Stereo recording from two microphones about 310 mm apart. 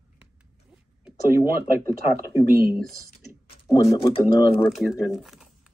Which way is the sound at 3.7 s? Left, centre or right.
Centre.